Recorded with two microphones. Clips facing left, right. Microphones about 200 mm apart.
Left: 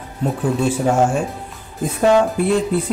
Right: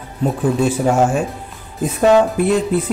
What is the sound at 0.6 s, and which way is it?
A man's voice, 5° right (ahead or behind).